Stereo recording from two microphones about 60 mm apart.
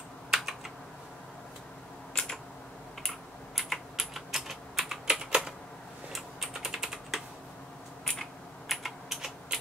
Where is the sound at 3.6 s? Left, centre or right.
Centre.